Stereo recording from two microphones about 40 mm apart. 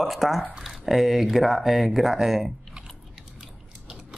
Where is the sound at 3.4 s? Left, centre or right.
Centre.